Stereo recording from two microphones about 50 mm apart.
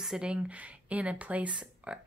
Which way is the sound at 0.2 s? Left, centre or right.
Right.